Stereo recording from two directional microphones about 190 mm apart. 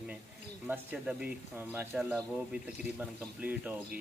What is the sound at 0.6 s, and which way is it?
Speech, 5° right (ahead or behind).